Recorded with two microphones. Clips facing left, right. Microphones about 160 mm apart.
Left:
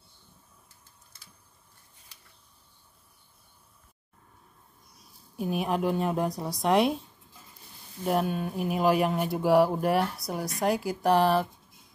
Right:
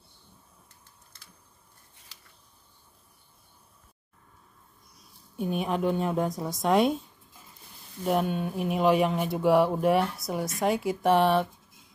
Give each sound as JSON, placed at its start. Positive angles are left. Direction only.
{"t": 2.1, "sound": "a sound", "side_deg": -90}
{"t": 5.3, "sound": "speech", "side_deg": 5}
{"t": 8.0, "sound": "speech", "side_deg": 0}